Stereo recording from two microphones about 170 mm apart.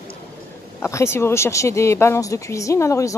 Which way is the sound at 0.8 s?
15° left (ahead or behind).